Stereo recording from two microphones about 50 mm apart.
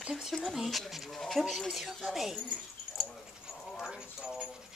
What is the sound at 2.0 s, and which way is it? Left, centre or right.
Speech, centre.